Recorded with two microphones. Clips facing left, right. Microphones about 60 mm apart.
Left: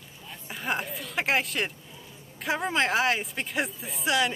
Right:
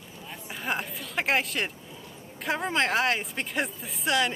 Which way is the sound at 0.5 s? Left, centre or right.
Centre.